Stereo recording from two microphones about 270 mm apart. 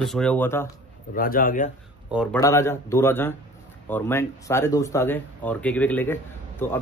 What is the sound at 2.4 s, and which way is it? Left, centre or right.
Speech, centre.